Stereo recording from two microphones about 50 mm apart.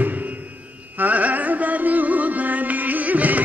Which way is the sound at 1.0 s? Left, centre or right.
Right.